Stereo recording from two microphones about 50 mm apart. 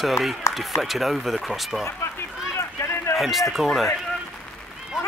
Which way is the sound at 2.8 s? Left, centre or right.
Left.